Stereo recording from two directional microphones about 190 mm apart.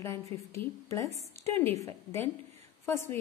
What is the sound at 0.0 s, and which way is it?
A woman's voice, 15° left (ahead or behind).